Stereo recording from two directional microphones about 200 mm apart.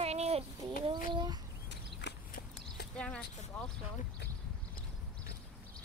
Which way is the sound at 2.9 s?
5° left (ahead or behind).